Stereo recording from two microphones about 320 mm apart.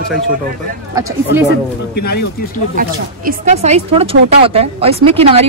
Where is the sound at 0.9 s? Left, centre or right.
Centre.